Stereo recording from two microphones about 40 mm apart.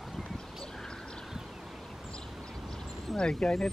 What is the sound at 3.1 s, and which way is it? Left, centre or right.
Speech, left.